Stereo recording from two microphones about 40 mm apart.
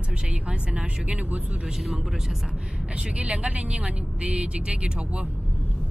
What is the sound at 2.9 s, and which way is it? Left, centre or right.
Speech, right.